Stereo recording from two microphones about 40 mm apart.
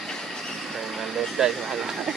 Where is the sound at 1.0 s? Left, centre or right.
Centre.